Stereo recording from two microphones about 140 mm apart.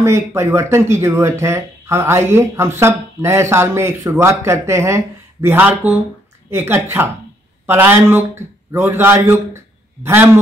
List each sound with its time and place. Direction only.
0.0 s a man's voice: 20° right (ahead or behind)